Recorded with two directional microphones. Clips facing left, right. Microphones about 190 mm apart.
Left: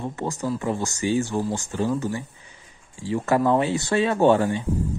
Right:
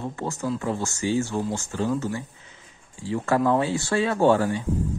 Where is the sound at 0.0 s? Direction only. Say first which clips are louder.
Left 1 dB; 15° left (ahead or behind).